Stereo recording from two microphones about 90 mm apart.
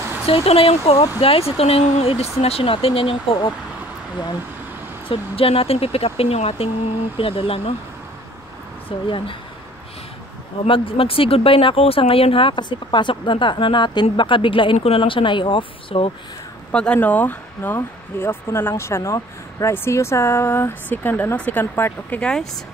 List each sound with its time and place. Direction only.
0.3 s speech: 90° left
5.0 s speech: 80° left
8.8 s speech: 70° left (ahead or behind)
10.7 s speech: 90° left
16.7 s speech: 15° left (ahead or behind)
22.2 s speech: 10° left (ahead or behind)